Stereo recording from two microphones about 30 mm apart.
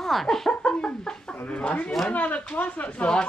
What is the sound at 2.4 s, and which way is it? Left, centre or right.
Speech, left.